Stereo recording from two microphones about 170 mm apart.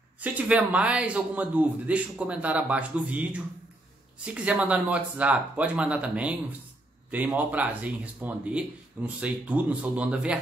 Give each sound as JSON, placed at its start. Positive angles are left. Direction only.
{"t": 0.2, "sound": "speech", "side_deg": -10}